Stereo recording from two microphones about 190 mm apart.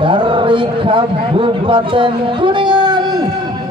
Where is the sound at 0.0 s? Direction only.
25° right (ahead or behind).